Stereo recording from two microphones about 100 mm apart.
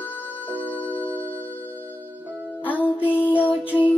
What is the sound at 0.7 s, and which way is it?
Music, 60° left (ahead or behind).